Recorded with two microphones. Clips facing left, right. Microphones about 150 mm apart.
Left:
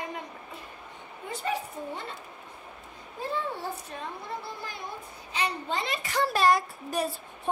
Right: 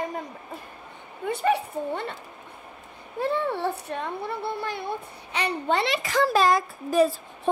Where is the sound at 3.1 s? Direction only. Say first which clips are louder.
Right 7 dB; 65° right (ahead or behind).